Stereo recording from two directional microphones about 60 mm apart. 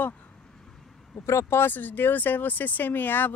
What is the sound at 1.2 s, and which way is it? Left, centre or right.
Speech, left.